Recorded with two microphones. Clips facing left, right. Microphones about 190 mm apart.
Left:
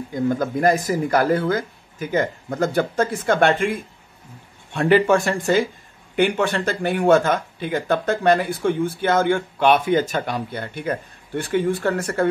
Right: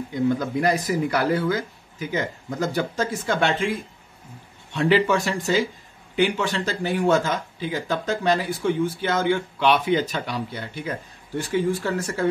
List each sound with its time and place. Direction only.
0.1 s speech: 50° left (ahead or behind)
4.7 s speech: 50° left (ahead or behind)